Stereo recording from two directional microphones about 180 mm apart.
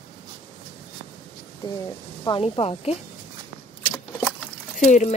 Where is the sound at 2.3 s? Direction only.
30° left (ahead or behind).